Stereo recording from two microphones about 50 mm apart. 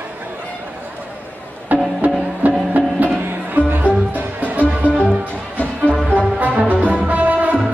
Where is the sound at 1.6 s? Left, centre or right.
Right.